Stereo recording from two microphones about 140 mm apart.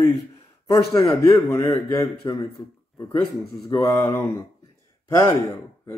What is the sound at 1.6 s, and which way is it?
Speech, 25° left (ahead or behind).